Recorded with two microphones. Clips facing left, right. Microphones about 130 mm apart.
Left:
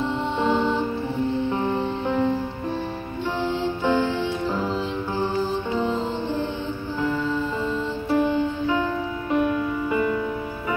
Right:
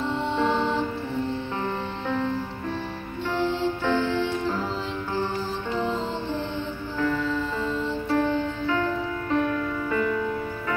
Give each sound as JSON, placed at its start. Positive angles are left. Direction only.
{"t": 1.6, "sound": "music", "side_deg": 15}
{"t": 3.3, "sound": "music", "side_deg": 10}
{"t": 8.1, "sound": "music", "side_deg": 10}